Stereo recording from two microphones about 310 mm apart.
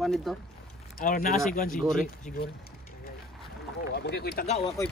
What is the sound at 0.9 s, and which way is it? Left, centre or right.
Speech, left.